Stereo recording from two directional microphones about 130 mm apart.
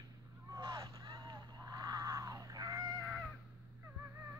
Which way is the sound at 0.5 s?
30° right (ahead or behind).